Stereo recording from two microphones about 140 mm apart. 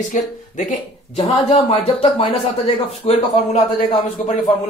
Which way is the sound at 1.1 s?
45° left (ahead or behind).